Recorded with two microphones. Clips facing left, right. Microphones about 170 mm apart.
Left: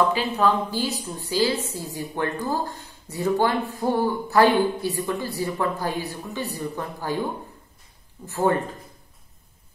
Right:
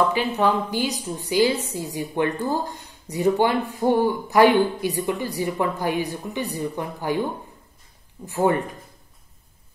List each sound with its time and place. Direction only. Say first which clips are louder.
0.4 s speech: even; 15° right (ahead or behind)
8.3 s speech: right 1 dB; 15° right (ahead or behind)